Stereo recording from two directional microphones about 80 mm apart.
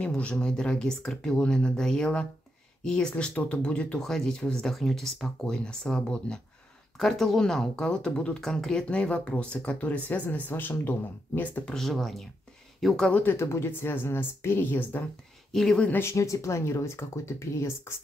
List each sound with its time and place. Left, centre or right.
0.0 s speech: centre
11.6 s speech: centre
13.1 s speech: left
15.5 s speech: centre
16.0 s speech: left